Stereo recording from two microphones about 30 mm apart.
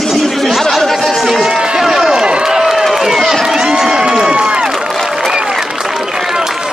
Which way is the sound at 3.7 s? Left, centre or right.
Centre.